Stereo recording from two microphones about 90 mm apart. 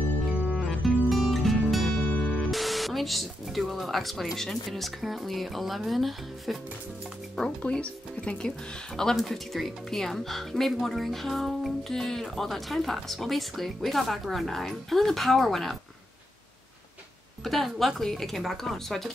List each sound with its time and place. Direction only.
1.0 s music: centre (ahead or behind)
2.0 s music: 15° left (ahead or behind)
2.5 s speech: centre (ahead or behind)
17.4 s speech: centre (ahead or behind)